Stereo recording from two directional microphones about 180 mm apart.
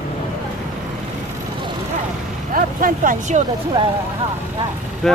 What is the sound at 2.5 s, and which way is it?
Speech, 50° right (ahead or behind).